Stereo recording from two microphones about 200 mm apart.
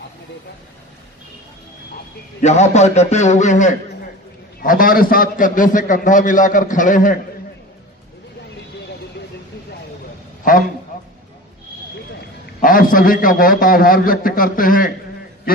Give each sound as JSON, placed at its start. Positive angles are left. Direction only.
{"t": 2.4, "sound": "a man's voice", "side_deg": 35}
{"t": 12.6, "sound": "a man's voice", "side_deg": 45}